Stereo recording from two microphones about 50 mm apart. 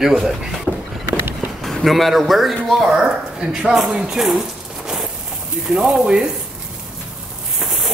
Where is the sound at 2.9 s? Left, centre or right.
Centre.